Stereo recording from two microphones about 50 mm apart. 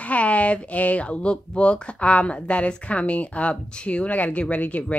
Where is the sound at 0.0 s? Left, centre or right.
Left.